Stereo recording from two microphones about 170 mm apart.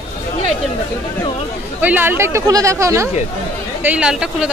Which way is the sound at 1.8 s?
10° right (ahead or behind).